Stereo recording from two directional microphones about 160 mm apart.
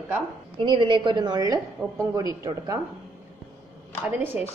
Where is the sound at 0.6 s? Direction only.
30° right (ahead or behind).